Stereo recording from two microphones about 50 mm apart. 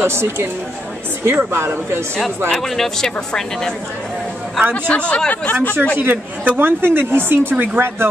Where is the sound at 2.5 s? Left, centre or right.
Centre.